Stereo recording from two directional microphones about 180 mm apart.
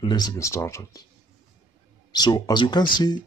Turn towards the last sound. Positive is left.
turn(degrees=25)  # may be behind; listen again after turning